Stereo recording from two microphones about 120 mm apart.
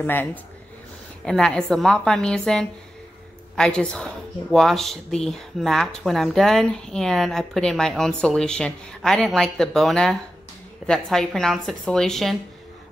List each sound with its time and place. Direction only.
0.0 s speech: 15° left (ahead or behind)
1.2 s speech: 5° left (ahead or behind)